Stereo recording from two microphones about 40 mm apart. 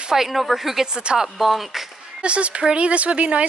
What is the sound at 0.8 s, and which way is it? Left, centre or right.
Speech, centre.